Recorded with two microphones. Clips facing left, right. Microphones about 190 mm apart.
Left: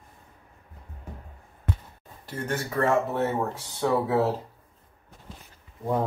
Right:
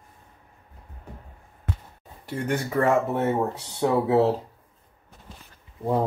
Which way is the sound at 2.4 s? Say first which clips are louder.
Right 3 dB; 15° right (ahead or behind).